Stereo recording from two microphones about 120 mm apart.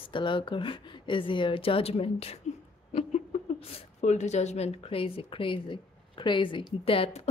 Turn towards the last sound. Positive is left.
turn(degrees=55)  # may be behind; listen again after turning